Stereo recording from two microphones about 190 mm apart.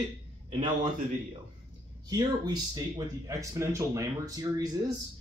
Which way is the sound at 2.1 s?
20° right (ahead or behind).